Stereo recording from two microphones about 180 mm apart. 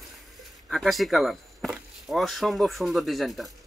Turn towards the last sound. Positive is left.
turn(degrees=0)  # may be behind; listen again after turning